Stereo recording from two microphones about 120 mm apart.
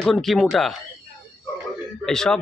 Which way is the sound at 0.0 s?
Centre (ahead or behind).